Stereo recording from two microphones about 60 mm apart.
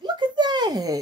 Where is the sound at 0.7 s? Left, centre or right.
Right.